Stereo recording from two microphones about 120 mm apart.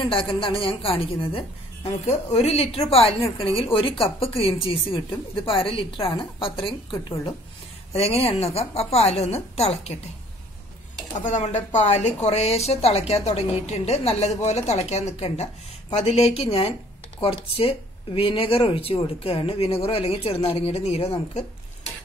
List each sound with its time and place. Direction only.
0.0 s speech: 45° left (ahead or behind)
7.9 s speech: 55° left (ahead or behind)
11.2 s speech: 75° left (ahead or behind); by 21.1 s 60° left (ahead or behind)